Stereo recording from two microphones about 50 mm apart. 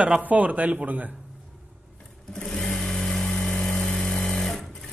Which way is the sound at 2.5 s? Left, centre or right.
Centre.